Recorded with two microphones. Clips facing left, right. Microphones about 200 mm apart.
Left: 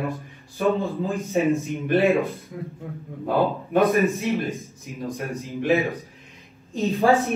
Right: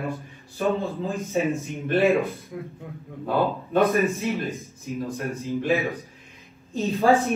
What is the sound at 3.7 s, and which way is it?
A man's voice, 15° left (ahead or behind).